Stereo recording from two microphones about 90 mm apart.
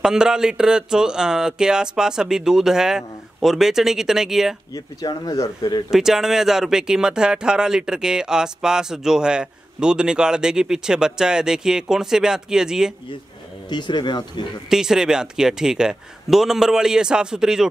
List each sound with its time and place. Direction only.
0.0 s speech: 10° right (ahead or behind)
4.7 s speech: 45° left (ahead or behind)
5.9 s speech: 5° right (ahead or behind)
13.7 s speech: 60° left (ahead or behind)
14.7 s speech: 5° right (ahead or behind)